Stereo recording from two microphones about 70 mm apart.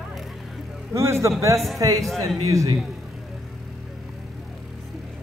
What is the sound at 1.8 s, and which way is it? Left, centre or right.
Speech, right.